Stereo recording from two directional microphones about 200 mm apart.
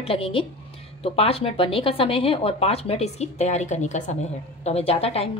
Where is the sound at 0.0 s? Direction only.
30° left (ahead or behind).